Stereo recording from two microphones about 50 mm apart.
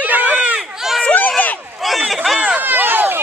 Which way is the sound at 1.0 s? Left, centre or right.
Left.